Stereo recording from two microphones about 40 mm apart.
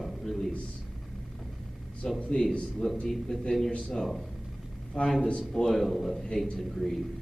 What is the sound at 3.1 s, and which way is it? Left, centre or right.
Speech, centre.